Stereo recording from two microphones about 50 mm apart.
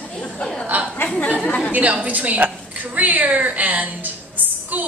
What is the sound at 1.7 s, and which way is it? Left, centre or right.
A man's voice, right.